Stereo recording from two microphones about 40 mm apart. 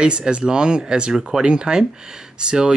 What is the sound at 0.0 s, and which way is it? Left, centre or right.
Speech, right.